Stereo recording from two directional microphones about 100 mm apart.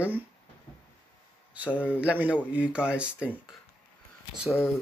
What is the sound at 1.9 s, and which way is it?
Speech, 15° right (ahead or behind).